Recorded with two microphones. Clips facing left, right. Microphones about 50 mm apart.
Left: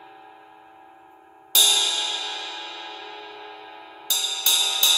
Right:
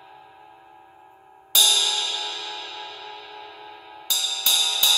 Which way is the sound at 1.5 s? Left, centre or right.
Centre.